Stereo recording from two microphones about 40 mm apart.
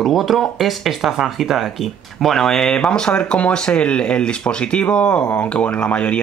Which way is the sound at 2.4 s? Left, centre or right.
Centre.